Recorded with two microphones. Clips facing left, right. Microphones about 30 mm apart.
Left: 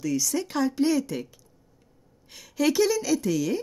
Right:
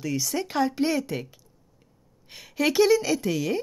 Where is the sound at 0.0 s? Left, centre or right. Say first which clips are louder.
Left 1 dB; right.